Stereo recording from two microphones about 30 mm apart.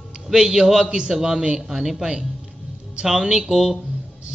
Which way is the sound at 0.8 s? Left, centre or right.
Right.